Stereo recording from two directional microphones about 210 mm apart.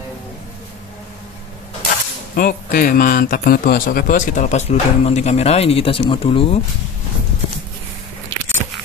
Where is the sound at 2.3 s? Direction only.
40° left (ahead or behind); by 6.6 s 25° left (ahead or behind).